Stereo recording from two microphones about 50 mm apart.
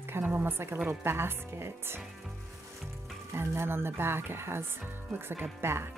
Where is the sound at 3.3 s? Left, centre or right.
Right.